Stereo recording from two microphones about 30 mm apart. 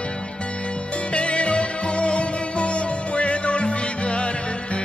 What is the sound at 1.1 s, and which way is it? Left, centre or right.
Music, left.